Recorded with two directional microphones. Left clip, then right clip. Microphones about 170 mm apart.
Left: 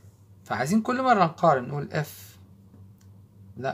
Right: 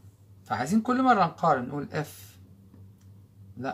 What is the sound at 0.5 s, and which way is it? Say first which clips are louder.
Speech: left 1 dB; 50° left (ahead or behind).